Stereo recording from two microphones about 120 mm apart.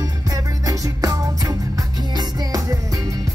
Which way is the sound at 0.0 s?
30° right (ahead or behind).